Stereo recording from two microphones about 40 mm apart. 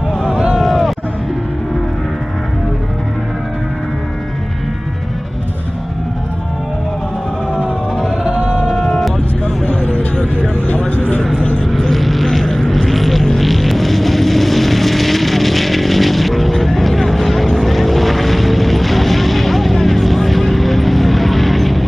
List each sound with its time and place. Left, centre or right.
0.6 s a sound: centre
8.3 s music: right
8.7 s vehicle: centre
9.7 s vehicle: left
10.9 s a sound: left
11.7 s vehicle: centre